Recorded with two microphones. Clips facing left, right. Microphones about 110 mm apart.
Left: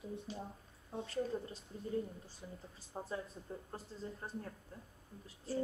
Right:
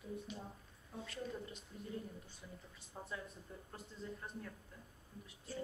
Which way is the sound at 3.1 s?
30° left (ahead or behind).